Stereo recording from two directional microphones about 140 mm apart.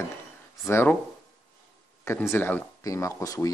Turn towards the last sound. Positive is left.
turn(degrees=25)  # may be behind; listen again after turning